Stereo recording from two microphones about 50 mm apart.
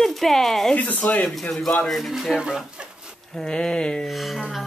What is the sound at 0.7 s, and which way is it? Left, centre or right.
Speech, left.